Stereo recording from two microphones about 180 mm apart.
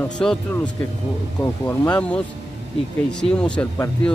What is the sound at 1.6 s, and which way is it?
Speech, 20° left (ahead or behind).